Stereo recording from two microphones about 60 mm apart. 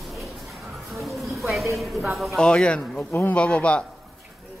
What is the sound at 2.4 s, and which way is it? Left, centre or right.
A man's voice, centre.